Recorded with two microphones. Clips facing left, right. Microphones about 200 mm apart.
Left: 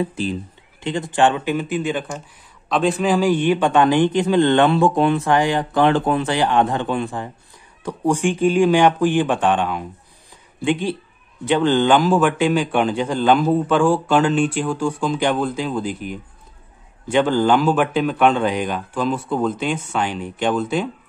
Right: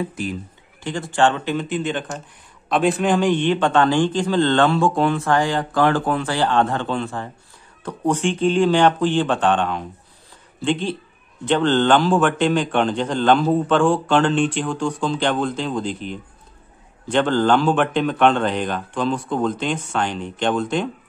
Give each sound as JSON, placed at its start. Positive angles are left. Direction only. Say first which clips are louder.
{"t": 0.0, "sound": "a man's voice", "louder": "left 3 dB", "side_deg": 30}